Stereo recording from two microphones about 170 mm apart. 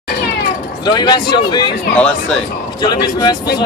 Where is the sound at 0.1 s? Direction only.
65° left (ahead or behind).